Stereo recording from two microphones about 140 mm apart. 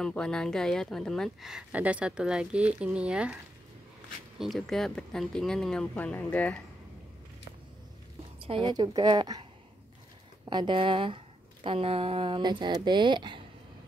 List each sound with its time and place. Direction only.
0.0 s speech: 5° left (ahead or behind)
4.4 s speech: centre (ahead or behind)
8.4 s a woman's voice: 40° right (ahead or behind)